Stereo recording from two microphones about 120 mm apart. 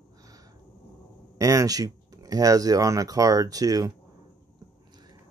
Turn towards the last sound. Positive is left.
turn(degrees=-30)  # may be behind; listen again after turning